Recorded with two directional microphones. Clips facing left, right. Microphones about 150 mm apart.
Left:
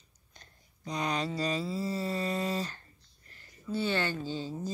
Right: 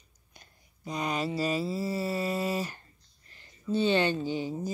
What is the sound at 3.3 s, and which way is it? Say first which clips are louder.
Speech: right 5 dB; 20° right (ahead or behind).